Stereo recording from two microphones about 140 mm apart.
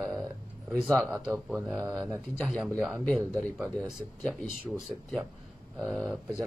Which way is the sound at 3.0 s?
10° left (ahead or behind).